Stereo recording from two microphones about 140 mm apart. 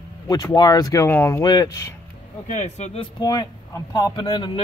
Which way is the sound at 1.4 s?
30° left (ahead or behind).